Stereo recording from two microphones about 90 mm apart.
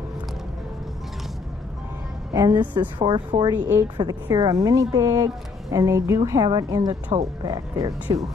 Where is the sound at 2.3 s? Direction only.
40° right (ahead or behind).